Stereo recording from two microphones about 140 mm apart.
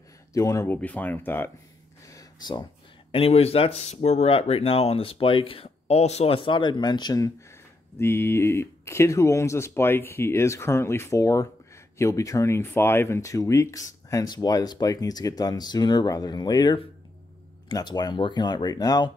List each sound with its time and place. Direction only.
0.3 s speech: 20° left (ahead or behind)
2.0 s a sound: 25° left (ahead or behind)
3.1 s speech: 45° left (ahead or behind); by 19.1 s 30° left (ahead or behind)